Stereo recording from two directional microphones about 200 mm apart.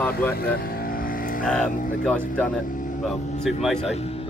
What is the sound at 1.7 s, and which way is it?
Music, 40° left (ahead or behind).